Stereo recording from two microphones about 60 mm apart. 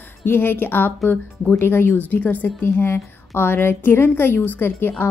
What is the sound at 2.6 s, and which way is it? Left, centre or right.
Speech, left.